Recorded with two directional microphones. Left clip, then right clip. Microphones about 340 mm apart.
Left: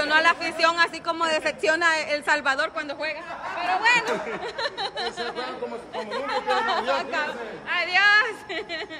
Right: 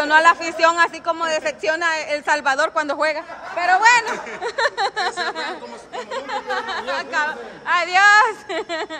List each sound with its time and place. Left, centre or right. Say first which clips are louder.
0.0 s speech: right 6 dB; centre
3.5 s speech: right 9 dB; right
4.6 s speech: right 11 dB; centre